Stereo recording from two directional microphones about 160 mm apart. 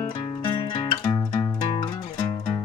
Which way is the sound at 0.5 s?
30° left (ahead or behind).